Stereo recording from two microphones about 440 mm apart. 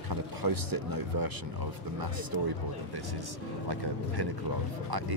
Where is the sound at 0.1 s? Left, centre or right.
Right.